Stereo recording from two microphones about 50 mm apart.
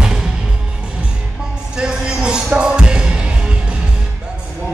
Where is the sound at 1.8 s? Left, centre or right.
Centre.